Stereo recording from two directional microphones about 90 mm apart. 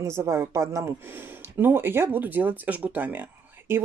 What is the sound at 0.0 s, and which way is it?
Speech, 30° right (ahead or behind).